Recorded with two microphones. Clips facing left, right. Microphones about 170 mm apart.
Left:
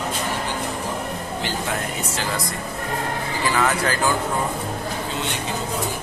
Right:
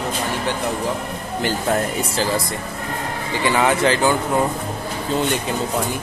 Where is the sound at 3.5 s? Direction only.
25° right (ahead or behind).